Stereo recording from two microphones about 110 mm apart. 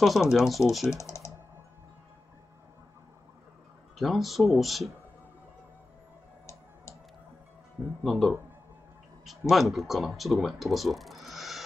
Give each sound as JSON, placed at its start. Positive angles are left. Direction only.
{"t": 0.0, "sound": "speech", "side_deg": 0}
{"t": 0.8, "sound": "speech", "side_deg": 25}
{"t": 4.0, "sound": "speech", "side_deg": 0}
{"t": 8.0, "sound": "speech", "side_deg": 0}
{"t": 9.5, "sound": "speech", "side_deg": 0}